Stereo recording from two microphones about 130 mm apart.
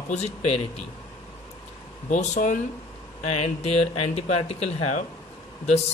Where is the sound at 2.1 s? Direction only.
70° left (ahead or behind).